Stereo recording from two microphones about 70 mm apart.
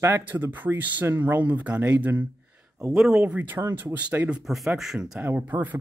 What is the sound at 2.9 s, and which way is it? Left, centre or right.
Speech, centre.